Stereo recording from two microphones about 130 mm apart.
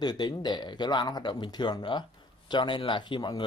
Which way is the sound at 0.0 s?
30° left (ahead or behind).